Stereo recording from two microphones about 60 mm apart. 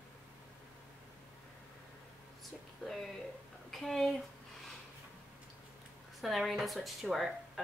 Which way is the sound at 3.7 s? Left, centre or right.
Centre.